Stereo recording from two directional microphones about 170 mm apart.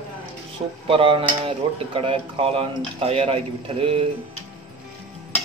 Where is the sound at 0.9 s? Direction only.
35° right (ahead or behind).